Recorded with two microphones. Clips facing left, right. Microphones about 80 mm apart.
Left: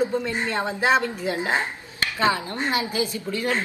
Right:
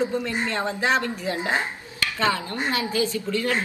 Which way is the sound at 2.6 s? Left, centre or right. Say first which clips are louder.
Even; left.